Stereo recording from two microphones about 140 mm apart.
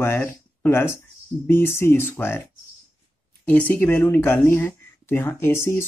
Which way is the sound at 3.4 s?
10° left (ahead or behind).